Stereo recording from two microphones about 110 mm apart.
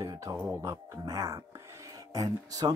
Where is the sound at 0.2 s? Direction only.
30° right (ahead or behind).